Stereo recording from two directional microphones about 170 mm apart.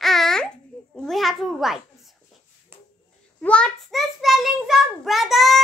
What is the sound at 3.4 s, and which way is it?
A child's voice, 5° left (ahead or behind).